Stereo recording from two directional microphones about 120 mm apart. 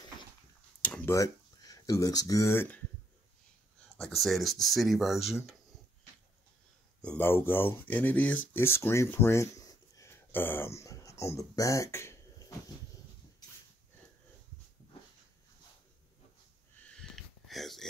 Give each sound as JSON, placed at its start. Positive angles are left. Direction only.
{"t": 0.8, "sound": "a sound", "side_deg": 15}
{"t": 1.1, "sound": "speech", "side_deg": 30}
{"t": 4.0, "sound": "speech", "side_deg": 0}
{"t": 7.0, "sound": "speech", "side_deg": 15}
{"t": 16.9, "sound": "wheeze", "side_deg": 0}